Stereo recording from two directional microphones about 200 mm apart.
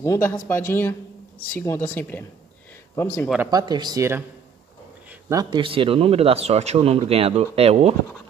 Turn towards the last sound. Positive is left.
turn(degrees=-30)  # may be behind; listen again after turning